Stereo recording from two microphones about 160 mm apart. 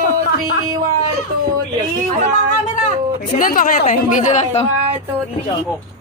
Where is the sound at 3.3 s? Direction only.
60° left (ahead or behind).